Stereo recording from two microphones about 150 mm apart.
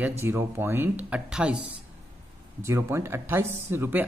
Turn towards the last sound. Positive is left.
turn(degrees=-15)  # may be behind; listen again after turning